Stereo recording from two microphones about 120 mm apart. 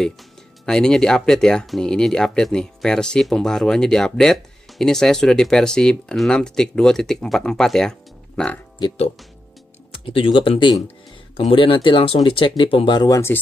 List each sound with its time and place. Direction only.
0.7 s speech: 5° left (ahead or behind)
10.0 s speech: 50° left (ahead or behind)